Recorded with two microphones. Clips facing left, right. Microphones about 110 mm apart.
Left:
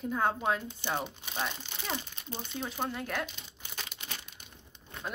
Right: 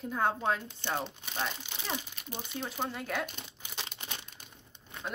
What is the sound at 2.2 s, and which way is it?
Crumpling, 30° left (ahead or behind).